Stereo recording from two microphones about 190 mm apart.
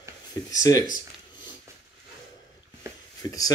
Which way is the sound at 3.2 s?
20° left (ahead or behind).